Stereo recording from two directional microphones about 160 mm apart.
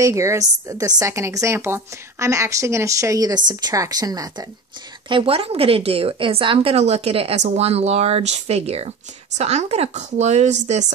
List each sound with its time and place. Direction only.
0.0 s a woman's voice: 20° right (ahead or behind)
5.1 s a woman's voice: 35° right (ahead or behind)